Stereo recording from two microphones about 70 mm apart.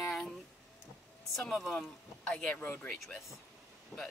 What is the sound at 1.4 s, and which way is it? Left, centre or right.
Speech, centre.